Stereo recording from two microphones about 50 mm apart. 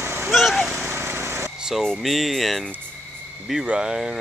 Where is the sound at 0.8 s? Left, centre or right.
Right.